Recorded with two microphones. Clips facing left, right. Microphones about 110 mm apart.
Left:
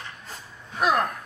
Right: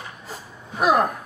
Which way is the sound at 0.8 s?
5° right (ahead or behind).